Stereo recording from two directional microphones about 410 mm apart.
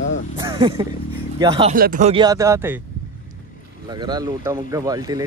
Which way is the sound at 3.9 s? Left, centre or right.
Centre.